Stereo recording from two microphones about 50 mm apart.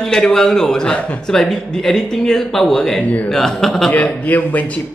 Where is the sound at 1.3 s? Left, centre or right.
Centre.